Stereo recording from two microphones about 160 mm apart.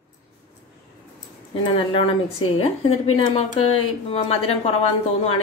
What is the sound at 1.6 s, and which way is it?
Speech, 35° left (ahead or behind).